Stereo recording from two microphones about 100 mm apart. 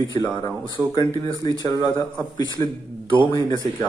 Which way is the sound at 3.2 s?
40° left (ahead or behind).